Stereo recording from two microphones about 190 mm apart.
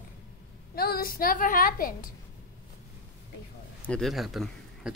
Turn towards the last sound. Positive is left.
turn(degrees=0)  # may be behind; listen again after turning